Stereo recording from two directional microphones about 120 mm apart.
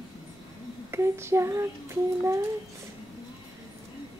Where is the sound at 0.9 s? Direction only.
20° right (ahead or behind).